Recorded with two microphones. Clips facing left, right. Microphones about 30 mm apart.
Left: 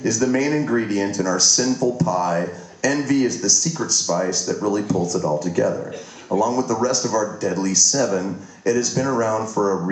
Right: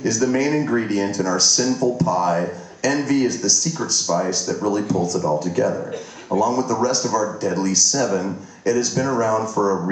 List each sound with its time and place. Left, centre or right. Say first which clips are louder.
0.2 s speech: right 1 dB; centre
1.1 s speech: even; right
1.4 s speech: even; centre
4.1 s speech: right 1 dB; centre
7.0 s speech: even; centre
7.5 s speech: right 1 dB; centre
7.9 s speech: even; centre